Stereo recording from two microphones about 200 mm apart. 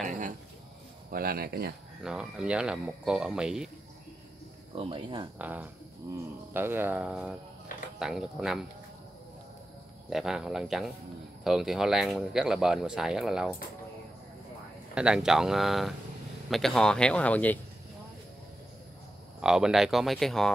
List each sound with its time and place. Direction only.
1.1 s speech: 50° right (ahead or behind)
2.0 s speech: 5° right (ahead or behind)
4.7 s speech: 25° right (ahead or behind)
5.4 s speech: 10° right (ahead or behind)
10.0 s speech: centre (ahead or behind)
15.0 s speech: 5° right (ahead or behind)
19.4 s speech: 5° right (ahead or behind)